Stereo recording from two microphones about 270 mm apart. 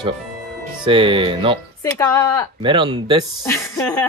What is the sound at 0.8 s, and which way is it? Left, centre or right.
Speech, centre.